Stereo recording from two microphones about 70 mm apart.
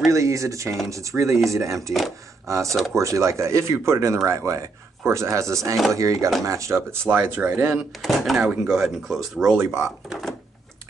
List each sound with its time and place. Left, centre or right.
0.1 s a sound: right
0.8 s speech: right
2.7 s speech: centre
3.0 s speech: right
6.9 s speech: right
8.0 s speech: centre
9.6 s speech: right
9.8 s speech: centre